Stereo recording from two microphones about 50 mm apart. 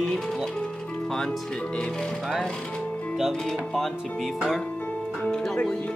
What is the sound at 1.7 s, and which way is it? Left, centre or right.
Speech, centre.